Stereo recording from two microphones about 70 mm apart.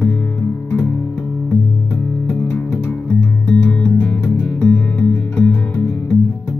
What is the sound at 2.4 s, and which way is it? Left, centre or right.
Music, centre.